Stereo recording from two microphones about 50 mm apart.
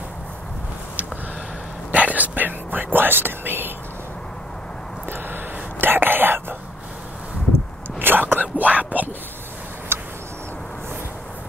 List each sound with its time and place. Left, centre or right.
1.9 s whispering: right
5.0 s whispering: right
8.0 s speech: right
9.9 s a sound: right